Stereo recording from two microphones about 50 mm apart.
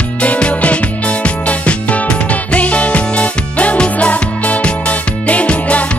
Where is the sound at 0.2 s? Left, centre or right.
Left.